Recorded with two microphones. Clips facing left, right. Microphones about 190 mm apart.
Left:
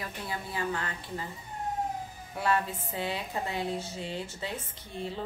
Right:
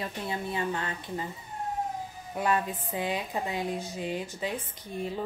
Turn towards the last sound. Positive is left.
turn(degrees=-15)  # may be behind; listen again after turning